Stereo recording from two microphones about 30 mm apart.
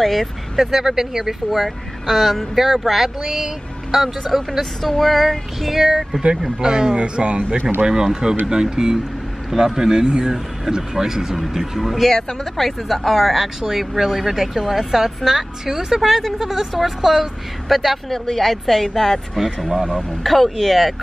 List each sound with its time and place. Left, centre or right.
0.0 s speech: centre
0.6 s a woman's voice: centre
2.0 s speech: centre
2.5 s a woman's voice: centre
4.3 s speech: centre
6.3 s speech: right
10.2 s a woman's voice: centre
11.5 s speech: centre
12.1 s speech: centre
12.6 s speech: centre
13.6 s a woman's voice: centre
18.9 s speech: centre
19.3 s speech: centre